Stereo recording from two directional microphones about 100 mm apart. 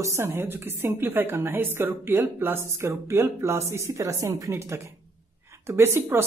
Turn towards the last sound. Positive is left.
turn(degrees=-20)  # may be behind; listen again after turning